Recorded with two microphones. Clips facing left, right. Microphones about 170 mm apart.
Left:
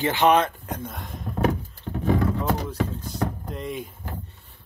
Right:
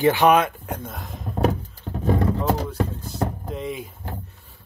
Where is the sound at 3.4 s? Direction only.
Centre (ahead or behind).